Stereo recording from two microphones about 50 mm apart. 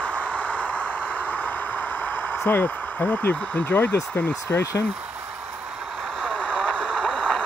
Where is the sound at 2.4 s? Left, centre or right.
Left.